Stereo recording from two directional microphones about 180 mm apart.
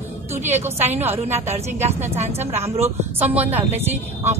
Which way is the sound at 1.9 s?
35° right (ahead or behind).